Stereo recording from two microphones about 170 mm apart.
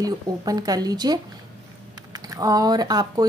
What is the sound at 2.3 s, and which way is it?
Speech, 20° right (ahead or behind).